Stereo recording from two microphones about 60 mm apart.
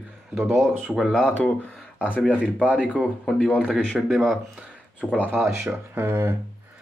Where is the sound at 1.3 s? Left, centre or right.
Left.